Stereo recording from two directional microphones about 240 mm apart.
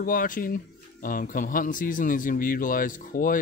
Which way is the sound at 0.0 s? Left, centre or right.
Left.